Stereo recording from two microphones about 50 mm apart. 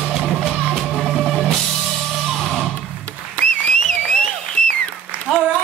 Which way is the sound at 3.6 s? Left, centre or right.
Centre.